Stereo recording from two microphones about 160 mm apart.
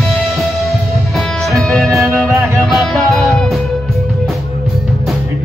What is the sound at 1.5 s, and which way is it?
Music, centre (ahead or behind).